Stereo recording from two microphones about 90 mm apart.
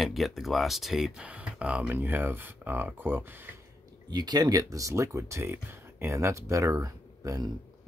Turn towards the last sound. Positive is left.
turn(degrees=-40)  # may be behind; listen again after turning